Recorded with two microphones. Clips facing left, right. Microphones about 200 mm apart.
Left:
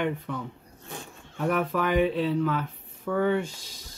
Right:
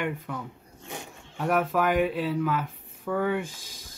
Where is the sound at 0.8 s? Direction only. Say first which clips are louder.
Right 1 dB; 15° right (ahead or behind).